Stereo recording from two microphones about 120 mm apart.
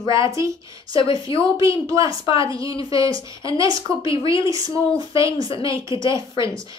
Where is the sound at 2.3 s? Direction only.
45° left (ahead or behind).